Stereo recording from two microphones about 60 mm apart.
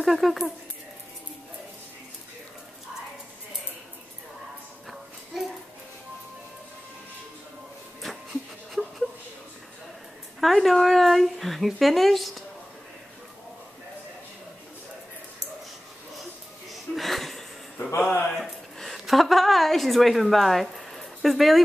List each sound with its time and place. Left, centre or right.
0.0 s speech: centre
5.3 s music: centre
8.0 s pant: centre
10.4 s speech: centre
16.7 s a sound: centre